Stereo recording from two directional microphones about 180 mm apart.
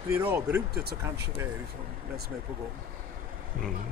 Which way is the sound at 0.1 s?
10° right (ahead or behind).